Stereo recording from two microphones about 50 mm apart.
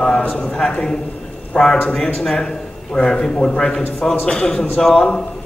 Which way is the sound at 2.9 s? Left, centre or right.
Left.